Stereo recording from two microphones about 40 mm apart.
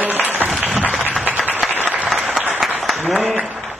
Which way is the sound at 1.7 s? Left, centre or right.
Right.